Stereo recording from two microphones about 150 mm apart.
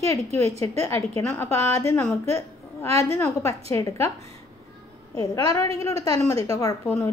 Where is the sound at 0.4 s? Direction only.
20° left (ahead or behind).